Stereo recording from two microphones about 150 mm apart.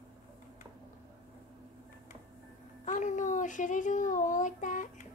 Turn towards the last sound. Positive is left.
turn(degrees=60)  # may be behind; listen again after turning